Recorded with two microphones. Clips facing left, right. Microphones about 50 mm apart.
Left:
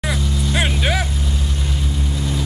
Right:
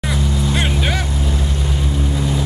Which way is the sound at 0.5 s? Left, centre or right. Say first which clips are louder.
Left 2 dB; centre.